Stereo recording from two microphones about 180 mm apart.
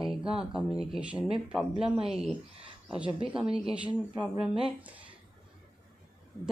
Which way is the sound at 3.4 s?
30° right (ahead or behind).